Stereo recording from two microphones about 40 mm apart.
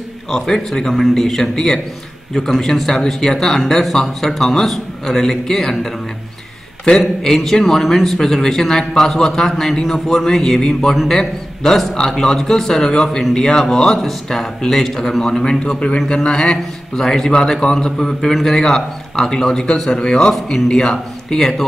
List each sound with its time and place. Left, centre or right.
0.3 s a man's voice: centre
7.2 s a man's voice: centre